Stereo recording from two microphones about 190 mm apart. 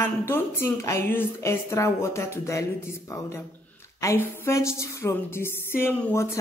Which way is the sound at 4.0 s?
15° left (ahead or behind).